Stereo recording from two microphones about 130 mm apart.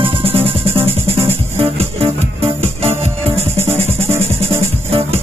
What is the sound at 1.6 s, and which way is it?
Music, 50° right (ahead or behind).